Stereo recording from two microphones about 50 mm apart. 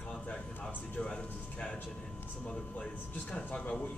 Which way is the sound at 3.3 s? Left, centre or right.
Left.